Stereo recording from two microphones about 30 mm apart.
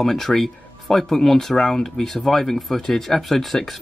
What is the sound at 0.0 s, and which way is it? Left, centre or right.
Speech, centre.